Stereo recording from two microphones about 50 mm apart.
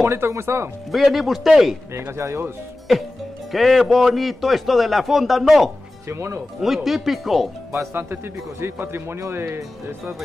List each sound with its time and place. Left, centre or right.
0.0 s speech: right
0.9 s a man's voice: centre
2.0 s speech: right
3.5 s a man's voice: centre
6.0 s speech: right
6.6 s a man's voice: centre
7.9 s speech: right